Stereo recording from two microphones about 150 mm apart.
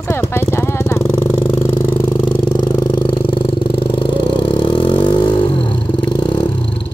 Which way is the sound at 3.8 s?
35° left (ahead or behind).